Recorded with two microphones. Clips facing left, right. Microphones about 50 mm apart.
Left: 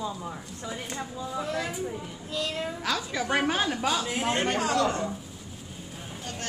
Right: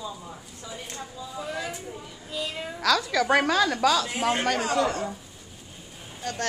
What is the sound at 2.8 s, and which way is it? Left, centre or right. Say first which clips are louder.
A woman's voice: right 9 dB; right.